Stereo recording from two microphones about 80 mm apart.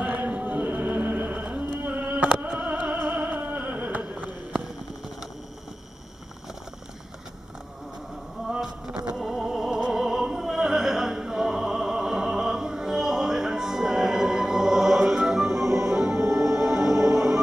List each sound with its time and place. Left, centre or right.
0.0 s music: centre
8.5 s a sound: centre
9.1 s opera: centre
16.4 s music: centre